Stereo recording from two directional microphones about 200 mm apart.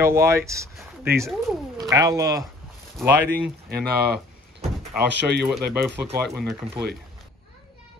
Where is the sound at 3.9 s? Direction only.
50° right (ahead or behind).